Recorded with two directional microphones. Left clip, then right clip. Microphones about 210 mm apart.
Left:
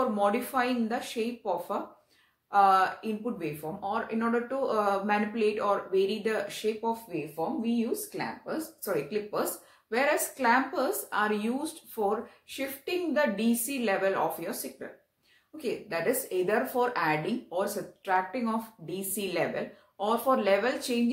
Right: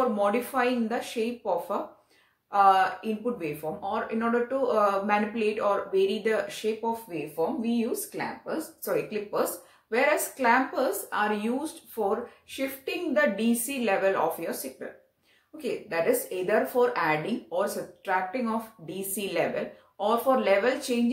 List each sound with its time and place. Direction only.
0.0 s a woman's voice: 15° left (ahead or behind)